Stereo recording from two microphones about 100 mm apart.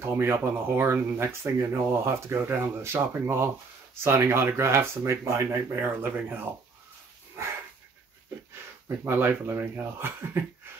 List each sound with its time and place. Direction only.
0.0 s speech: 25° right (ahead or behind)
8.8 s speech: 25° right (ahead or behind)